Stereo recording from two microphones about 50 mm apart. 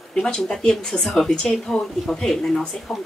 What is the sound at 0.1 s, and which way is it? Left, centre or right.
A woman's voice, centre.